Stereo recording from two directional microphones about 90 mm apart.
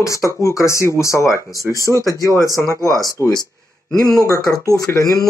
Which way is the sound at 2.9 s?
45° left (ahead or behind).